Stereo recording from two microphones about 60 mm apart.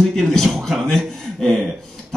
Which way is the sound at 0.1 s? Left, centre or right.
Centre.